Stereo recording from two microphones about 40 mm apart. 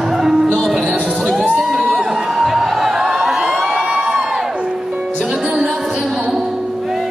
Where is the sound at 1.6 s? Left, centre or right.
Centre.